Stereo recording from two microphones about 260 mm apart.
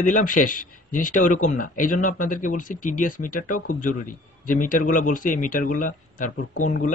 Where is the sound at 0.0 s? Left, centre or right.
Left.